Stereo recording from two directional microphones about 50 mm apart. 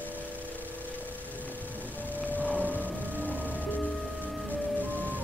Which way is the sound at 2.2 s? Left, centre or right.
Left.